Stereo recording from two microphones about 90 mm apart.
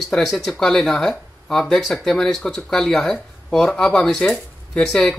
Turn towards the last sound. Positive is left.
turn(degrees=5)  # may be behind; listen again after turning